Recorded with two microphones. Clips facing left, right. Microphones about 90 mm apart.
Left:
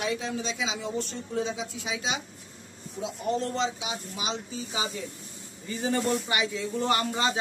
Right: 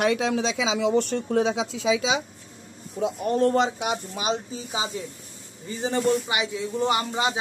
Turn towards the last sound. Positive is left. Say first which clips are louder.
# right 2 dB
turn(degrees=-15)  # may be behind; listen again after turning